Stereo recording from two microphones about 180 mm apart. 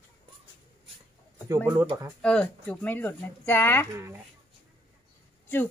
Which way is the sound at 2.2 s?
5° left (ahead or behind).